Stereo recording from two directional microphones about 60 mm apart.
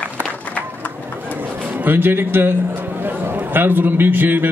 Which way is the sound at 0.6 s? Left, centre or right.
Left.